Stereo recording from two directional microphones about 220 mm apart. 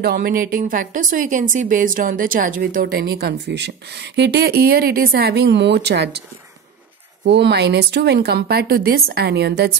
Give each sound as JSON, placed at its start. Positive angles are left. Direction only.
{"t": 0.0, "sound": "a woman's voice", "side_deg": -45}
{"t": 7.2, "sound": "speech", "side_deg": -50}